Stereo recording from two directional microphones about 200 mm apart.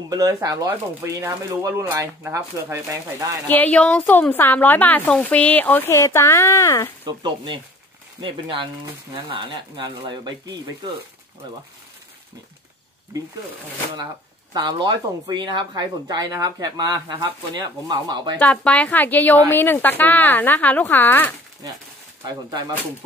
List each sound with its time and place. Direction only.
0.1 s speech: 20° right (ahead or behind)
3.4 s a woman's voice: 10° left (ahead or behind)
7.1 s speech: 20° right (ahead or behind)
14.5 s speech: 20° right (ahead or behind)
18.4 s a woman's voice: 5° left (ahead or behind)